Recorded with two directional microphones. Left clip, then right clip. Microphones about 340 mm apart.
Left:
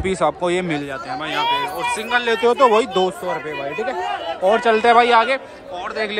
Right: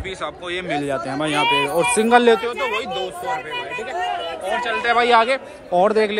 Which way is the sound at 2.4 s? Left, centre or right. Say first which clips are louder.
Left 9 dB; centre.